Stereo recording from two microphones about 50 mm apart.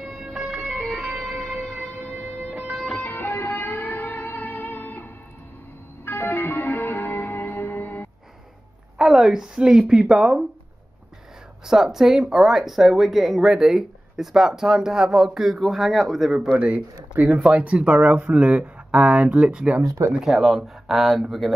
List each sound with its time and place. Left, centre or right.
0.5 s music: centre
1.5 s siren: centre
2.1 s vehicle: right
3.0 s music: left
8.9 s speech: centre
11.6 s speech: centre
16.5 s speech: right
20.2 s speech: centre